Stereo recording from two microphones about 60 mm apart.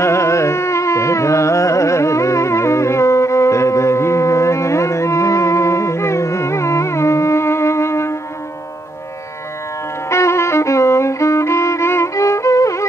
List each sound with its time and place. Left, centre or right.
0.0 s carnatic music: left
10.0 s music: left